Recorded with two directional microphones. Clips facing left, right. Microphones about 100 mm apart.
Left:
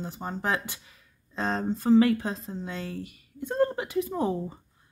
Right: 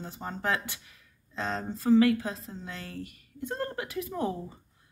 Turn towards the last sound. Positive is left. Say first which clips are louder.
# left 4 dB
turn(degrees=25)  # may be behind; listen again after turning